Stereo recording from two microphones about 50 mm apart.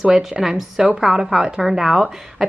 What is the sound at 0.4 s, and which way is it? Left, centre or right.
A woman's voice, centre.